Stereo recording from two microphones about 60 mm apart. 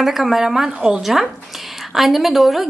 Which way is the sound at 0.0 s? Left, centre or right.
Centre.